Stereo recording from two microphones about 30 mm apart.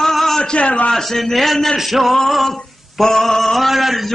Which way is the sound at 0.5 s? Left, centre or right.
Left.